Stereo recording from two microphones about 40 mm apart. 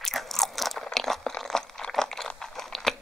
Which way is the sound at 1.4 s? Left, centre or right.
Centre.